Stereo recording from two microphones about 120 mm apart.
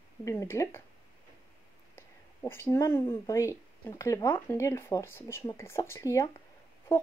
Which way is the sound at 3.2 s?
25° left (ahead or behind).